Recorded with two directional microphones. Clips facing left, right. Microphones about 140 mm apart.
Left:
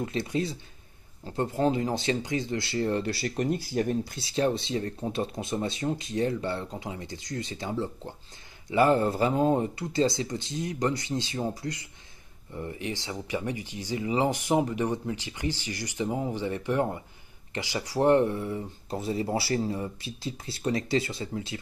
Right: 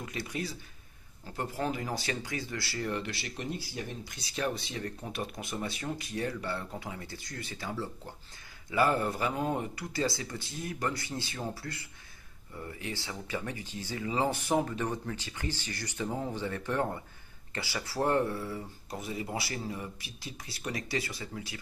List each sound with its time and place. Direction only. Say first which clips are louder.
0.0 s speech: left 8 dB; 25° left (ahead or behind); by 4.1 s 45° left (ahead or behind)
4.1 s speech: left 7 dB; 25° left (ahead or behind)